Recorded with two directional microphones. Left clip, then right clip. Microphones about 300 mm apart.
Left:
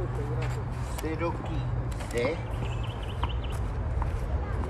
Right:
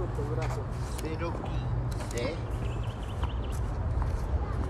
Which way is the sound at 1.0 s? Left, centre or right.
Centre.